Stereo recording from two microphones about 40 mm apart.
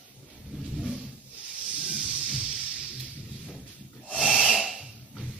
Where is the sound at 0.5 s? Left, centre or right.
Right.